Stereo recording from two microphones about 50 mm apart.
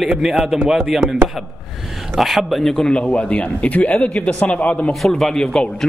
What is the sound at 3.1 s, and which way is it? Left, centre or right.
Speech, left.